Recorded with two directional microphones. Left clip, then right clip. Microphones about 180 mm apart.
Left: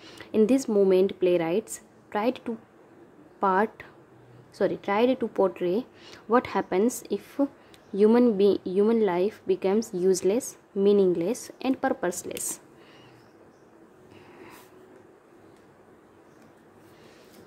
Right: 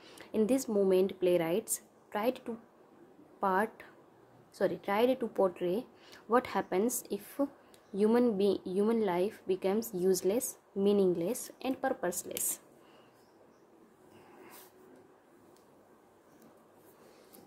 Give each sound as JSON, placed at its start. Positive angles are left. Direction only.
{"t": 0.0, "sound": "speech", "side_deg": 15}